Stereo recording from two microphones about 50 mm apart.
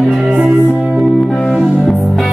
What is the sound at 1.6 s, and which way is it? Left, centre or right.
Music, centre.